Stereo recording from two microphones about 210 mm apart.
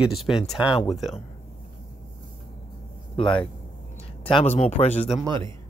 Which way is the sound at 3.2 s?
25° left (ahead or behind).